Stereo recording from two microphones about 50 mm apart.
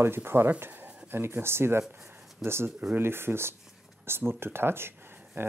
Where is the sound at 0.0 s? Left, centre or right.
Right.